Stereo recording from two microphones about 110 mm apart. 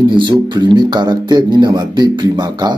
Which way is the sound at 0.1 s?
45° right (ahead or behind).